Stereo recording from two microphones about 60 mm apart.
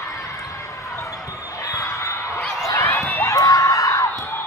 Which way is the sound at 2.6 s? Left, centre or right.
Left.